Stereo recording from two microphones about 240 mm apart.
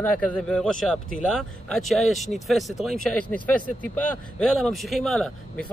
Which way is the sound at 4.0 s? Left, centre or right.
Centre.